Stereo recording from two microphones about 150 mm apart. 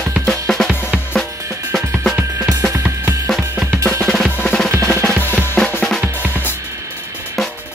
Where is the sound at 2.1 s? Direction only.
15° right (ahead or behind).